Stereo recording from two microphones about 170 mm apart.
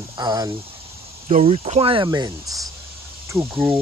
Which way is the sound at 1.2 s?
40° right (ahead or behind).